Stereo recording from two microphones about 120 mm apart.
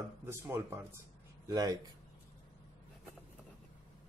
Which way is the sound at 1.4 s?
30° right (ahead or behind).